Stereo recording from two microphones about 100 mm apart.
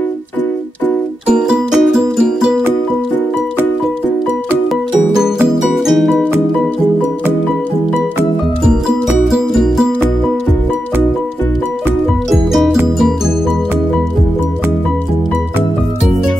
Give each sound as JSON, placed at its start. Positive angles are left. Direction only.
{"t": 1.2, "sound": "music", "side_deg": -5}
{"t": 4.9, "sound": "music", "side_deg": -5}
{"t": 9.7, "sound": "music", "side_deg": 0}
{"t": 12.3, "sound": "music", "side_deg": 0}